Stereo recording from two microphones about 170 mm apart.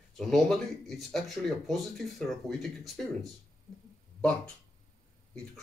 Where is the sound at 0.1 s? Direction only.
Centre (ahead or behind).